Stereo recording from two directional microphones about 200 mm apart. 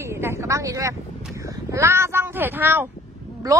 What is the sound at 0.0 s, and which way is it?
Speech, 15° right (ahead or behind).